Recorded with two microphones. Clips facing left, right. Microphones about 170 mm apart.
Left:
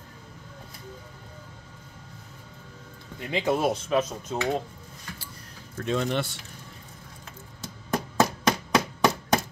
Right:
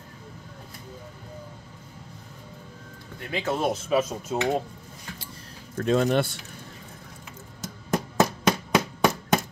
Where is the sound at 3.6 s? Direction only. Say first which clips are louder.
Right 1 dB; 5° right (ahead or behind).